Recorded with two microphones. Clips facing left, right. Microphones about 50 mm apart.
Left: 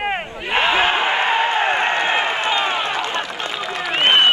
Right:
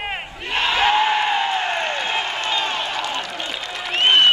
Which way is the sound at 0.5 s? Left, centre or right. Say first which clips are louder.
Left 1 dB; left.